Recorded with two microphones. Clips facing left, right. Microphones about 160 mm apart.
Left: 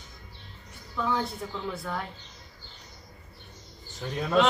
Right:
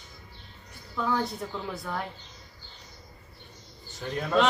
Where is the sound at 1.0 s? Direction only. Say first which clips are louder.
Right 1 dB; centre (ahead or behind).